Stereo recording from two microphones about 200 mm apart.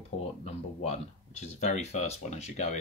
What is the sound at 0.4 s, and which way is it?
Speech, 30° left (ahead or behind).